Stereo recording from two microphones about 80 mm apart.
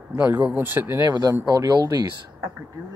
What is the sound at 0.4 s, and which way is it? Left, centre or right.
Speech, centre.